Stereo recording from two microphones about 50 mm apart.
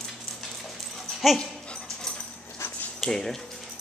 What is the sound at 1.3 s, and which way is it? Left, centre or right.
Dog, left.